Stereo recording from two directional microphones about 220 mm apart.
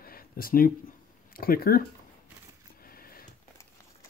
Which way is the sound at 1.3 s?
40° left (ahead or behind).